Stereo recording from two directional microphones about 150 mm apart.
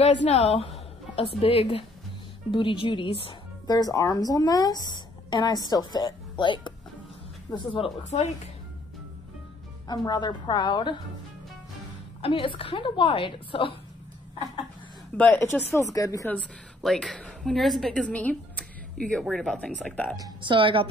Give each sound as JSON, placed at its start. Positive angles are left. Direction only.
{"t": 0.0, "sound": "a woman's voice", "side_deg": 50}
{"t": 9.8, "sound": "speech", "side_deg": 30}
{"t": 12.2, "sound": "a woman's voice", "side_deg": 35}
{"t": 15.1, "sound": "speech", "side_deg": 15}
{"t": 16.3, "sound": "a woman's voice", "side_deg": 5}
{"t": 20.2, "sound": "a woman's voice", "side_deg": -30}